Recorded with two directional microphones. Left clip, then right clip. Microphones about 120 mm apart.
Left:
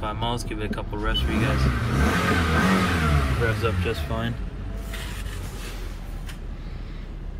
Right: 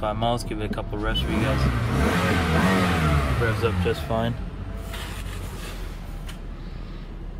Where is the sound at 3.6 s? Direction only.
25° right (ahead or behind).